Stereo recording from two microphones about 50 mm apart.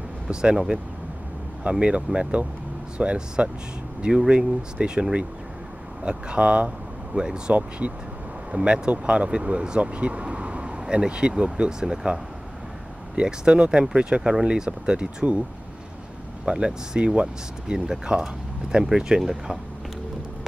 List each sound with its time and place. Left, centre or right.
0.3 s speech: centre
16.4 s speech: centre